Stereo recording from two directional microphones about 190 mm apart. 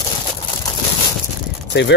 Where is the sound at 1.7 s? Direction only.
65° left (ahead or behind).